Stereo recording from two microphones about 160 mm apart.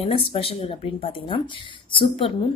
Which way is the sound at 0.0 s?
35° left (ahead or behind).